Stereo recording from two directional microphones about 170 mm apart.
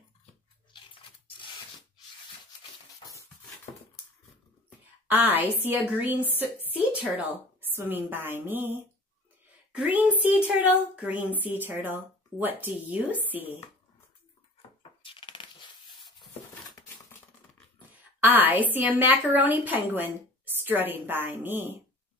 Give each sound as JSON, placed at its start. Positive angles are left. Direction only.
{"t": 0.9, "sound": "rub", "side_deg": 30}
{"t": 5.0, "sound": "a woman's voice", "side_deg": -10}
{"t": 14.8, "sound": "coin", "side_deg": 30}
{"t": 18.2, "sound": "a woman's voice", "side_deg": -10}